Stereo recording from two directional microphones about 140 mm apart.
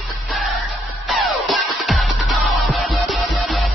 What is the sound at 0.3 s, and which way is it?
Music, centre (ahead or behind).